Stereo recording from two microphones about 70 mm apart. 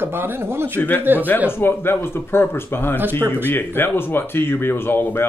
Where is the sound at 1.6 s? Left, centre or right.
Left.